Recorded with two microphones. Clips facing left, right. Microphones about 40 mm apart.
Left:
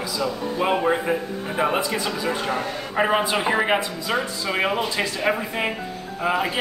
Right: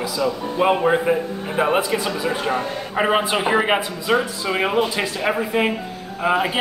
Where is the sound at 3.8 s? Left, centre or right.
Right.